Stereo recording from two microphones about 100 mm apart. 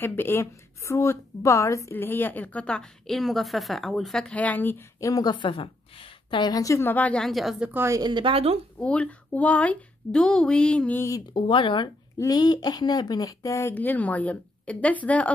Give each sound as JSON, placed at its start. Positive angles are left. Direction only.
{"t": 0.0, "sound": "a woman's voice", "side_deg": 20}
{"t": 5.0, "sound": "speech", "side_deg": 35}
{"t": 5.3, "sound": "a woman's voice", "side_deg": 60}
{"t": 6.5, "sound": "speech", "side_deg": 30}
{"t": 6.9, "sound": "a woman's voice", "side_deg": 15}
{"t": 7.2, "sound": "a woman's voice", "side_deg": 0}
{"t": 7.7, "sound": "speech", "side_deg": -25}
{"t": 8.0, "sound": "speech", "side_deg": -55}
{"t": 8.8, "sound": "a woman's voice", "side_deg": 10}
{"t": 11.0, "sound": "speech", "side_deg": 35}
{"t": 11.3, "sound": "speech", "side_deg": 55}
{"t": 12.2, "sound": "speech", "side_deg": 40}
{"t": 13.7, "sound": "a woman's voice", "side_deg": 15}